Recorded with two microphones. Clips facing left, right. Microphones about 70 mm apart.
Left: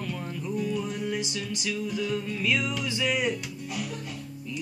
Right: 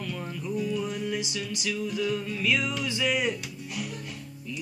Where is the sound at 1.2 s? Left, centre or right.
Left.